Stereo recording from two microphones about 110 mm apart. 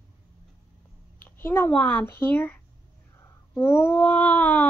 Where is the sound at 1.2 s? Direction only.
20° left (ahead or behind).